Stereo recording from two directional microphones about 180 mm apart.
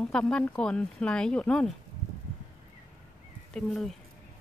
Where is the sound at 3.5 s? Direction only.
Centre (ahead or behind).